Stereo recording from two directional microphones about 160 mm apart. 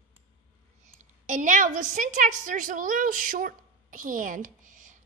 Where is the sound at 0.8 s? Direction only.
50° right (ahead or behind).